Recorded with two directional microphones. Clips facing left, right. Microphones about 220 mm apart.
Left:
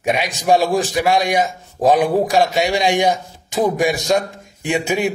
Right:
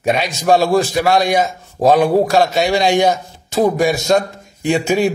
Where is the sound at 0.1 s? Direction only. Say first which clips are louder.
Right 2 dB; 15° left (ahead or behind).